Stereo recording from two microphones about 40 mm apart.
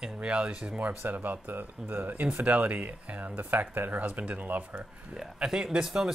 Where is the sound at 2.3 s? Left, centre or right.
Right.